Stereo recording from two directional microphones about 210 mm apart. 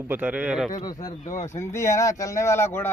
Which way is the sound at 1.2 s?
35° left (ahead or behind).